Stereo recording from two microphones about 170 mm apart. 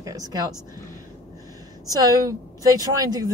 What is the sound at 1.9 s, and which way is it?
Speech, 20° right (ahead or behind).